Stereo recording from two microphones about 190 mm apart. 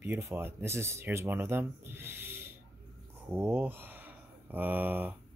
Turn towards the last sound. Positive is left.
turn(degrees=-10)  # may be behind; listen again after turning